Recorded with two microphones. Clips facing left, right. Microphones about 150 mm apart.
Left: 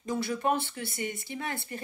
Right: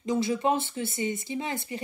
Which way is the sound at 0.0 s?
20° right (ahead or behind).